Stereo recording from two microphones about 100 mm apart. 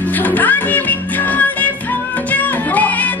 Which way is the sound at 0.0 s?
15° left (ahead or behind).